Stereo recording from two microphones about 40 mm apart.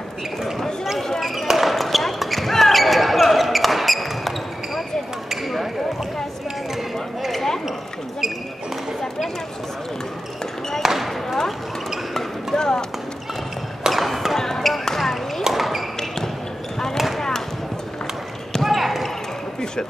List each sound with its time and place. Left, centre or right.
1.2 s basketball bounce: centre
5.3 s basketball bounce: centre
6.7 s a sound: centre
10.8 s basketball bounce: centre
12.5 s clip-clop: centre
13.8 s a sound: centre
14.3 s basketball bounce: centre
15.5 s basketball bounce: centre
16.9 s basketball bounce: centre
18.6 s basketball bounce: centre